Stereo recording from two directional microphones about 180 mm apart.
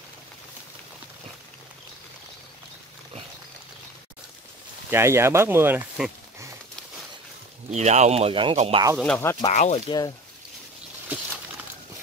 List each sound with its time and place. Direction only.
4.9 s speech: 15° right (ahead or behind)
7.7 s speech: 40° right (ahead or behind)
8.9 s speech: 5° left (ahead or behind)
9.5 s speech: 40° left (ahead or behind)
9.8 s speech: 20° left (ahead or behind)